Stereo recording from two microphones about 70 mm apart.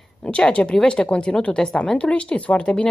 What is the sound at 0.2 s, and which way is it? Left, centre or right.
A woman's voice, centre.